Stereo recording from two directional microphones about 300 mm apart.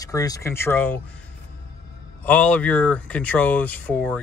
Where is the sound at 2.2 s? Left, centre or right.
Centre.